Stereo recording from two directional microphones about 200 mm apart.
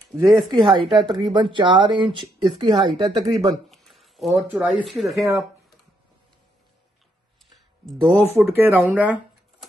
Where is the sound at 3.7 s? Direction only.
Centre (ahead or behind).